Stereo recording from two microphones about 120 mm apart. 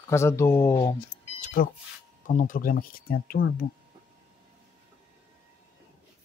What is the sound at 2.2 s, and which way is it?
Speech, 90° left.